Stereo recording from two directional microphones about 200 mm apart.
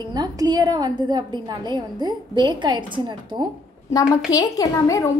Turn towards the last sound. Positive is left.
turn(degrees=15)  # may be behind; listen again after turning